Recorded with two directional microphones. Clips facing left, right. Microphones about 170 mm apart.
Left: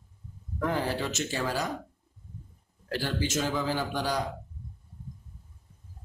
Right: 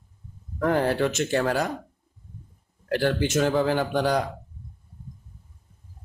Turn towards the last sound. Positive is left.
turn(degrees=-60)  # may be behind; listen again after turning